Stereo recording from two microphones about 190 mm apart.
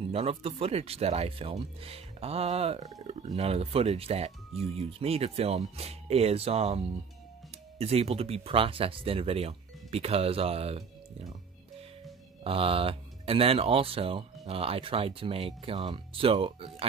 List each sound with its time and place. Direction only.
0.1 s speech: 30° right (ahead or behind)
3.0 s a sound: 35° right (ahead or behind)
3.3 s speech: 30° right (ahead or behind)
7.8 s speech: 30° right (ahead or behind)
12.4 s speech: 30° right (ahead or behind)